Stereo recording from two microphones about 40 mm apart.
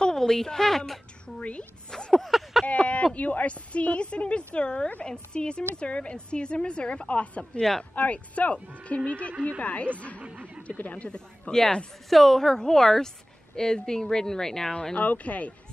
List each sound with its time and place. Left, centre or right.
0.0 s a woman's voice: centre
1.2 s a woman's voice: left
1.9 s a woman's voice: centre
2.2 s a sound: centre
3.2 s a woman's voice: left
11.5 s a woman's voice: centre
12.1 s a woman's voice: centre
14.7 s a woman's voice: left
15.0 s a woman's voice: left